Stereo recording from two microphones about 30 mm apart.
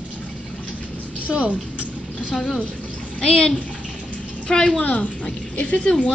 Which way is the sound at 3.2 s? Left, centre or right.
Left.